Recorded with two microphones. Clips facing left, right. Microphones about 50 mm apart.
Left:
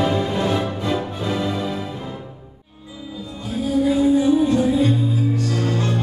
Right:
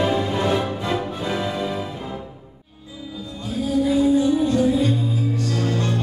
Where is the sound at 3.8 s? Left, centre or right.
Centre.